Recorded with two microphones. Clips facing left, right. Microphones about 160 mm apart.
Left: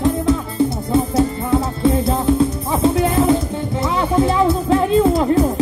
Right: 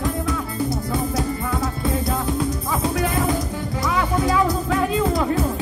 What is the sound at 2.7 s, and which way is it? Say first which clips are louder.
Music: left 7 dB; 30° left (ahead or behind).